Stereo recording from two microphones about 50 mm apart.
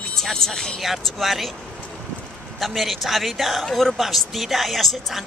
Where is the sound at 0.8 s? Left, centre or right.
Centre.